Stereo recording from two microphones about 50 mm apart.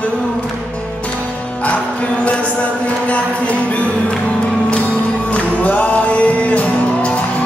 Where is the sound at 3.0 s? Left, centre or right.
Left.